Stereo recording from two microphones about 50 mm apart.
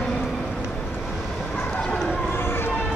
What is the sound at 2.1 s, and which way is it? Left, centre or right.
Run, left.